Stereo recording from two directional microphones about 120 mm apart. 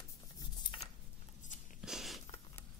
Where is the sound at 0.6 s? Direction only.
40° left (ahead or behind).